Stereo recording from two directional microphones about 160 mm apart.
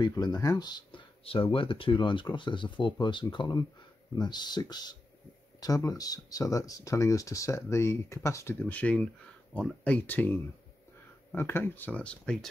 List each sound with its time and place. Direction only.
0.0 s speech: 25° left (ahead or behind); by 12.4 s 5° left (ahead or behind)